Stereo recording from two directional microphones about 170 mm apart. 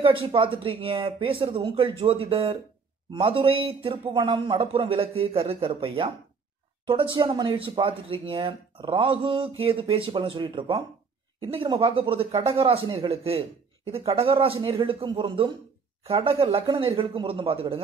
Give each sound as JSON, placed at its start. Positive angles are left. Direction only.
{"t": 0.0, "sound": "a man's voice", "side_deg": -30}